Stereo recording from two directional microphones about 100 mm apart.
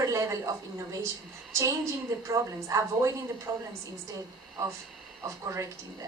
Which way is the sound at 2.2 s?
30° right (ahead or behind).